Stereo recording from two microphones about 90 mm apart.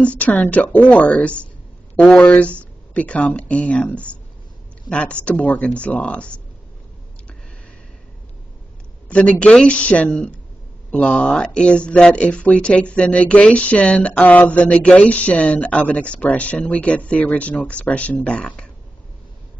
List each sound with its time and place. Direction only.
0.0 s speech: 15° left (ahead or behind)
9.1 s speech: 15° left (ahead or behind)